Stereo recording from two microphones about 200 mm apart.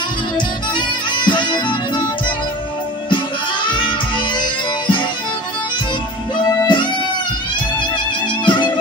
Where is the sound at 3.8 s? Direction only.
25° left (ahead or behind).